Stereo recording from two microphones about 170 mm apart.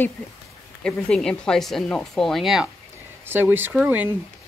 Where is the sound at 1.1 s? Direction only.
5° left (ahead or behind).